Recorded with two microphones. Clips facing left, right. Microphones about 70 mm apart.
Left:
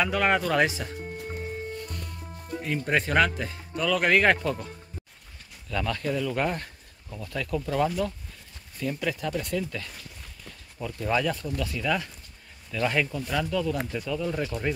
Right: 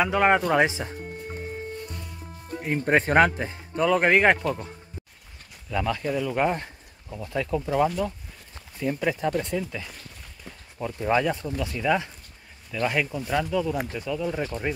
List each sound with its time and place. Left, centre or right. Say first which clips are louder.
0.0 s speech: right 3 dB; right
2.7 s speech: right 4 dB; right; by 4.6 s centre
5.7 s speech: right 2 dB; centre
12.8 s speech: right 1 dB; centre